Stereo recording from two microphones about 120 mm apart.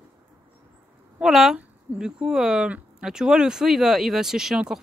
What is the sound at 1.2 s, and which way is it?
Speech, centre (ahead or behind).